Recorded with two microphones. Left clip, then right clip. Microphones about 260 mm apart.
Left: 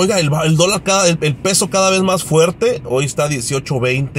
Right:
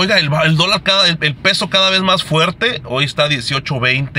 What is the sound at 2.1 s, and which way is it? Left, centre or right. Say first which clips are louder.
Speech: left 1 dB; right.